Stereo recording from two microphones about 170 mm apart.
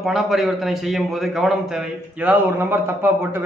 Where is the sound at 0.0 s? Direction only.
Centre (ahead or behind).